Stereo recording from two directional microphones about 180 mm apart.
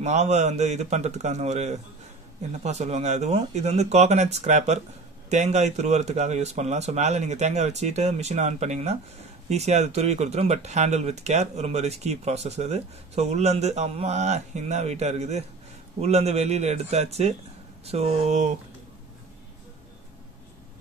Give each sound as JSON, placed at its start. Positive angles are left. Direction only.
{"t": 0.0, "sound": "speech", "side_deg": -40}